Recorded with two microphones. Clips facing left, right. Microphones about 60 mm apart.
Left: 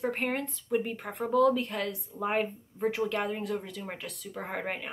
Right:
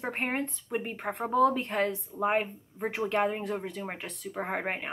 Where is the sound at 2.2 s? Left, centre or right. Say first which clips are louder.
Right 1 dB; centre.